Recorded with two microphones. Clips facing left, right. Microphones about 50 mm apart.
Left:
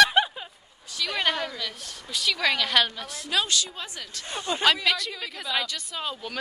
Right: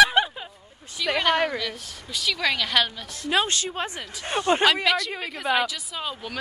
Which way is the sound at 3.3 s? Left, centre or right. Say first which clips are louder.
Right 3 dB; right.